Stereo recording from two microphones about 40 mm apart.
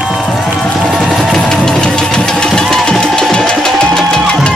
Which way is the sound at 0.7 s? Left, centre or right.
Centre.